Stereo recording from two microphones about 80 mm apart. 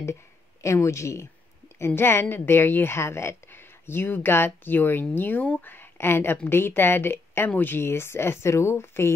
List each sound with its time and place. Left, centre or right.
0.0 s a woman's voice: left